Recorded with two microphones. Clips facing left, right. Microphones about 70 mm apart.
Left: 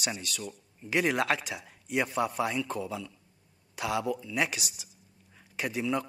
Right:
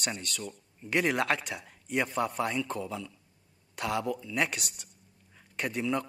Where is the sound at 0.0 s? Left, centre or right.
Centre.